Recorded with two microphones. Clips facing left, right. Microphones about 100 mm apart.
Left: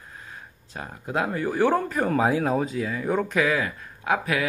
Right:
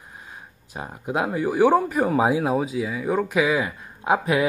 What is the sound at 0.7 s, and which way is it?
Speech, 15° right (ahead or behind).